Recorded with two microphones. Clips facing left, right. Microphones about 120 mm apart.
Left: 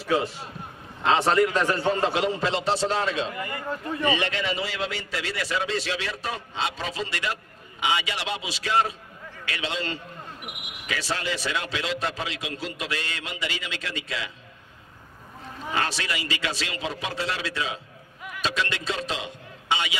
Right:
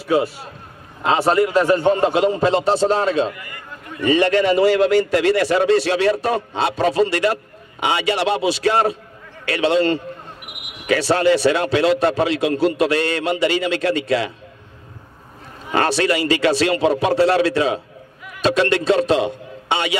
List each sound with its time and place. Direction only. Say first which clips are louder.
1.3 s a man's voice: right 6 dB; 40° right (ahead or behind)
3.3 s a man's voice: left 6 dB; 30° left (ahead or behind)
4.1 s a man's voice: right 15 dB; 50° right (ahead or behind)
15.7 s a man's voice: right 11 dB; 55° right (ahead or behind)